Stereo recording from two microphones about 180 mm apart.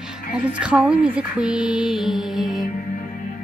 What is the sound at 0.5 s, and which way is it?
Music, 10° right (ahead or behind).